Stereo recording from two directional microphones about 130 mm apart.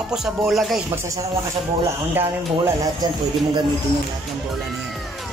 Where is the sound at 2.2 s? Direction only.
20° right (ahead or behind).